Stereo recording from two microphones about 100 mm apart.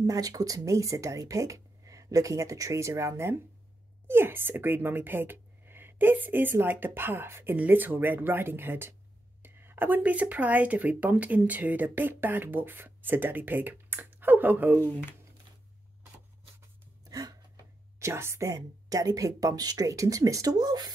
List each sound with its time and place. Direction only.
0.0 s speech: 35° right (ahead or behind); by 14.8 s 20° right (ahead or behind)
14.8 s speech: 20° left (ahead or behind)
17.0 s a sound: 40° right (ahead or behind)
17.9 s speech: 25° right (ahead or behind)